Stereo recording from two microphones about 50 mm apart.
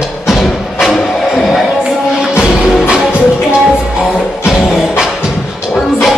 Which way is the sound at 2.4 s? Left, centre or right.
Centre.